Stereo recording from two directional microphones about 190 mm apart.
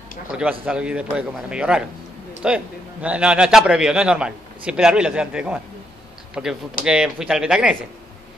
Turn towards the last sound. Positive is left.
turn(degrees=-5)  # may be behind; listen again after turning